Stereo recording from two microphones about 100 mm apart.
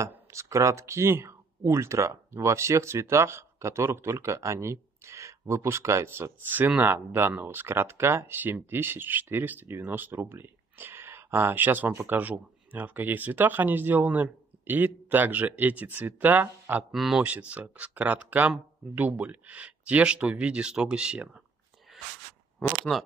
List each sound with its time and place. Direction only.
0.0 s speech: 30° right (ahead or behind)
16.9 s speech: centre (ahead or behind)
17.2 s speech: 15° right (ahead or behind)